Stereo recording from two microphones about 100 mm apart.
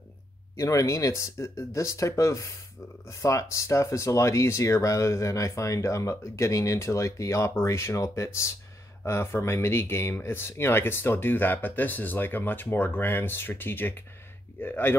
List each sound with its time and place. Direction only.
0.6 s speech: 30° left (ahead or behind)